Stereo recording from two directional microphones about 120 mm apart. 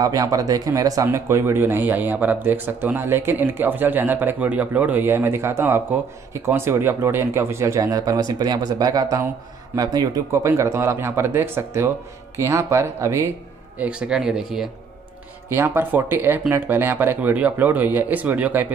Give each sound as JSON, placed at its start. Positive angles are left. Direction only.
{"t": 0.0, "sound": "speech", "side_deg": -30}
{"t": 13.7, "sound": "speech", "side_deg": -10}
{"t": 15.5, "sound": "speech", "side_deg": -20}